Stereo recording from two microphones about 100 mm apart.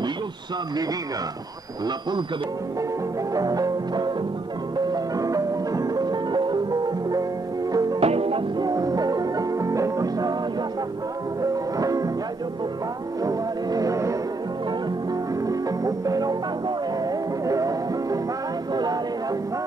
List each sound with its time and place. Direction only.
3.3 s music: 40° right (ahead or behind)
8.0 s music: 80° right
8.5 s music: 40° right (ahead or behind)
11.8 s music: 35° right (ahead or behind)
13.2 s music: 35° right (ahead or behind)
15.4 s music: 35° right (ahead or behind)
18.7 s a sound: 45° right (ahead or behind)